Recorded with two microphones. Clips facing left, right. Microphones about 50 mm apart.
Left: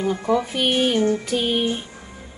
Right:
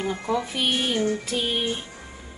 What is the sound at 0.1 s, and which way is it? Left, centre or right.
Speech, centre.